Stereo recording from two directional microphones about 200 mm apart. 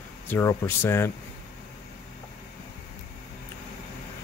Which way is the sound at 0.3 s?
15° left (ahead or behind).